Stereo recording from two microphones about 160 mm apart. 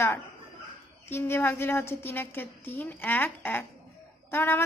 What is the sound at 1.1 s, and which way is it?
A woman's voice, 15° left (ahead or behind).